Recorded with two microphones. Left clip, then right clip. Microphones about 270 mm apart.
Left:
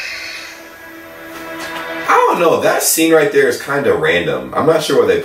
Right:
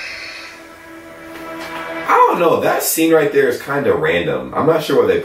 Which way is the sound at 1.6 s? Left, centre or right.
Centre.